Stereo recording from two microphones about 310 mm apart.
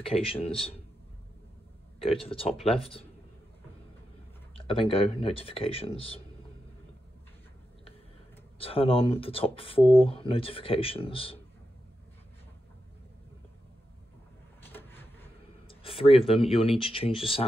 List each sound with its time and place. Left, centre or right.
0.0 s speech: centre
2.0 s speech: centre
4.6 s speech: centre
8.5 s speech: centre
14.7 s vehicle: centre
15.7 s speech: centre